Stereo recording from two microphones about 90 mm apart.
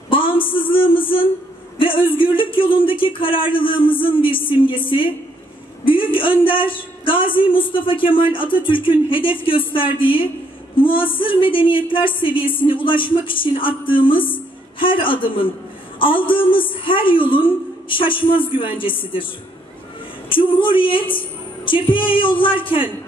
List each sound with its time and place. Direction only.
0.1 s a sound: 75° left (ahead or behind)
1.8 s speech: 75° left (ahead or behind)
2.7 s music: 75° left (ahead or behind)
5.9 s a woman's voice: 75° left (ahead or behind)
6.6 s a sound: 70° left (ahead or behind)
7.4 s music: 75° left (ahead or behind)
20.2 s music: 70° left (ahead or behind)